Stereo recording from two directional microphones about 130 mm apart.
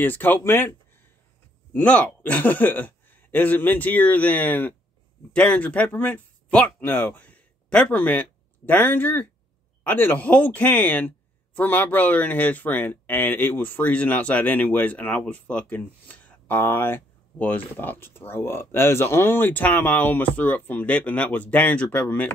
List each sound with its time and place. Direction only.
0.0 s speech: 15° left (ahead or behind)